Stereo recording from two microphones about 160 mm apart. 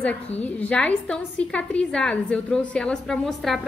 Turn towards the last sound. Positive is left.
turn(degrees=0)  # may be behind; listen again after turning